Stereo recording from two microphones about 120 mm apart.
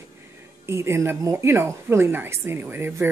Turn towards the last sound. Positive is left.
turn(degrees=-20)  # may be behind; listen again after turning